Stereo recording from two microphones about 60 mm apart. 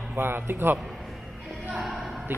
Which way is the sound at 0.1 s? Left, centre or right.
Right.